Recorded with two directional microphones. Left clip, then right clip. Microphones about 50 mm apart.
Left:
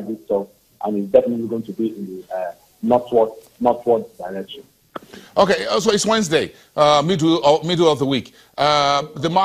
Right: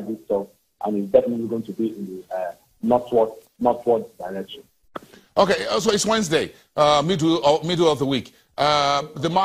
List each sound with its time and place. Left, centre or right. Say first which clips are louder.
0.0 s speech: left 3 dB; centre